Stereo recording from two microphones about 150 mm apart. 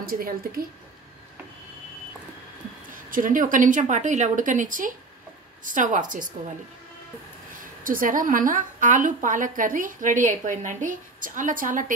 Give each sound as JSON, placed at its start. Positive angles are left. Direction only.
{"t": 0.0, "sound": "a woman's voice", "side_deg": -75}
{"t": 3.1, "sound": "a woman's voice", "side_deg": -65}
{"t": 7.8, "sound": "a woman's voice", "side_deg": -65}